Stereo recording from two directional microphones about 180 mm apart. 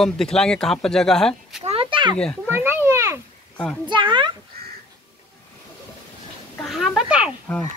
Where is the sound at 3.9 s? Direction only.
25° right (ahead or behind).